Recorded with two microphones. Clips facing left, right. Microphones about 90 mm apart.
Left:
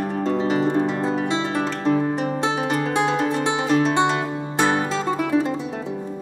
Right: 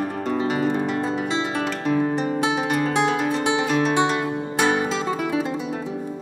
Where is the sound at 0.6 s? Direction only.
20° left (ahead or behind).